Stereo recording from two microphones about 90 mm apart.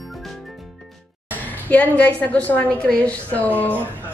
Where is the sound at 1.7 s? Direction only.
15° left (ahead or behind).